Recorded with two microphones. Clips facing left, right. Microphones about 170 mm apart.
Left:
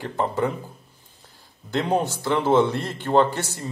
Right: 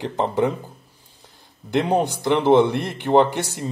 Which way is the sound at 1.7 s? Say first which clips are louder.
Right 3 dB; 15° right (ahead or behind).